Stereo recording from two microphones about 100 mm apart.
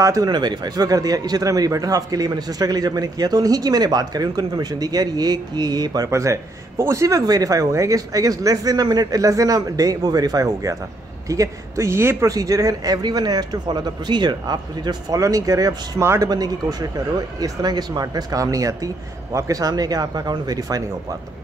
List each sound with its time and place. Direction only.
0.0 s a man's voice: 35° right (ahead or behind)
6.0 s a man's voice: 30° right (ahead or behind)
12.3 s a man's voice: 35° right (ahead or behind)